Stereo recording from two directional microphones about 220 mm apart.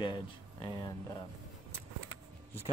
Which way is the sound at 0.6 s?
15° left (ahead or behind).